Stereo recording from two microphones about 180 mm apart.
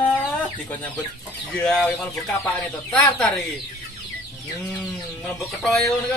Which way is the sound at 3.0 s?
5° left (ahead or behind).